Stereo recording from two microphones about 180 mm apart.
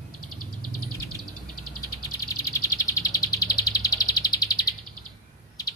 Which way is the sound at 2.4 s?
15° left (ahead or behind).